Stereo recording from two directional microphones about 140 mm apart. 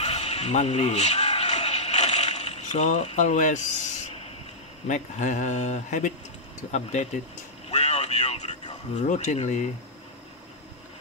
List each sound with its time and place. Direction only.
0.0 s music: 50° left (ahead or behind)
3.2 s speech: 60° left (ahead or behind)
7.7 s a sound: 50° left (ahead or behind)
8.9 s speech: 60° left (ahead or behind)